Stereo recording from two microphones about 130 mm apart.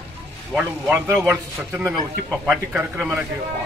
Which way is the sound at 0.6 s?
15° right (ahead or behind).